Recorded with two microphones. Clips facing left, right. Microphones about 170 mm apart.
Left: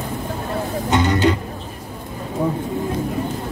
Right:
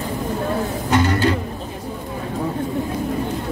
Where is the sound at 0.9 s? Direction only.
20° left (ahead or behind).